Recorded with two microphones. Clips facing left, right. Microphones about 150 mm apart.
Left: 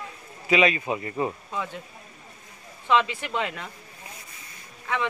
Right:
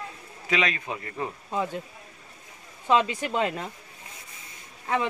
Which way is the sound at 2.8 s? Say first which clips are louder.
Even; 40° right (ahead or behind).